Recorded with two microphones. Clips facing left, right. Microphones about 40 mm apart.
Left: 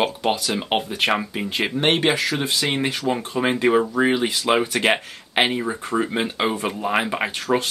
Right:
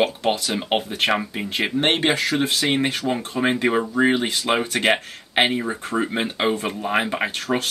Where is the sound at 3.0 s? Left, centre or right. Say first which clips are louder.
Even; centre.